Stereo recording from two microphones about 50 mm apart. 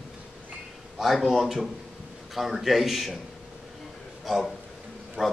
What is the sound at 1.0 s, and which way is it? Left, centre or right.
A man's voice, centre.